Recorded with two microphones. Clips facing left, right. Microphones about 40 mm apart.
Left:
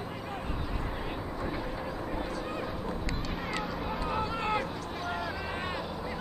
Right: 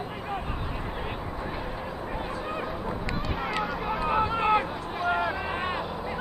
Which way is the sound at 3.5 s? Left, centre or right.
Centre.